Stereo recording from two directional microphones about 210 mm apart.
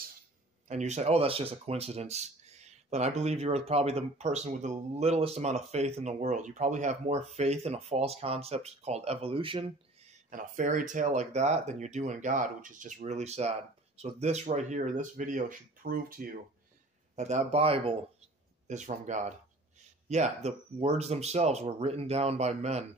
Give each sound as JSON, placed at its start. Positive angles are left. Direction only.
{"t": 0.7, "sound": "speech", "side_deg": -35}
{"t": 10.3, "sound": "speech", "side_deg": -35}